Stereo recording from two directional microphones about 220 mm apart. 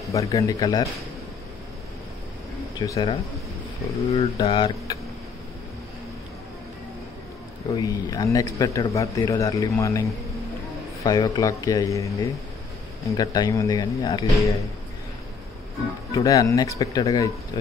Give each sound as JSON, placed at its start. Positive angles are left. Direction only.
{"t": 0.1, "sound": "speech", "side_deg": 15}
{"t": 2.8, "sound": "speech", "side_deg": 20}
{"t": 7.7, "sound": "speech", "side_deg": 15}
{"t": 11.1, "sound": "speech", "side_deg": 15}
{"t": 16.1, "sound": "speech", "side_deg": 15}